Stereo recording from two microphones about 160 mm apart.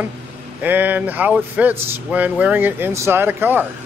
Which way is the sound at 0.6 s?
10° right (ahead or behind).